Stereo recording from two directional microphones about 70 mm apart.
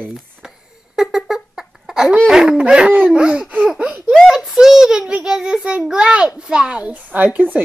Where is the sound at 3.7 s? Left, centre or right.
Centre.